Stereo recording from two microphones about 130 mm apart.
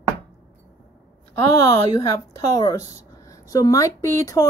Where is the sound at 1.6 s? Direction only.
30° left (ahead or behind).